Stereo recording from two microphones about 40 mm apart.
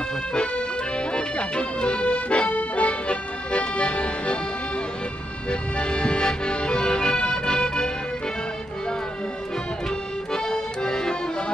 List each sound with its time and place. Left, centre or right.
0.3 s accordion: left
5.5 s accordion: left
10.3 s accordion: centre